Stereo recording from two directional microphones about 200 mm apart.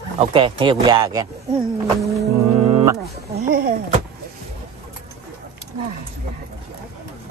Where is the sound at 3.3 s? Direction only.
50° right (ahead or behind).